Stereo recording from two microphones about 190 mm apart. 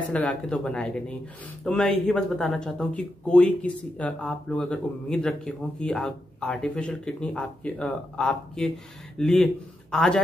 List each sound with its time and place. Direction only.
0.1 s speech: 5° left (ahead or behind)